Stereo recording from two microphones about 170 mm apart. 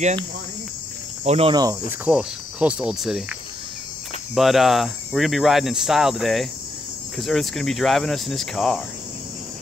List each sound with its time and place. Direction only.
1.2 s cricket: 40° right (ahead or behind)
1.5 s cricket: 20° right (ahead or behind)
1.9 s speech: 5° right (ahead or behind)
4.4 s speech: centre (ahead or behind)